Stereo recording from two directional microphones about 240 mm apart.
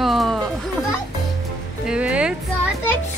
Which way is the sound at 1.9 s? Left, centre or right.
Centre.